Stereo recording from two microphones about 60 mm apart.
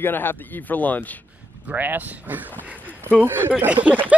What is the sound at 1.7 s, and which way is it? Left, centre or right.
Speech, right.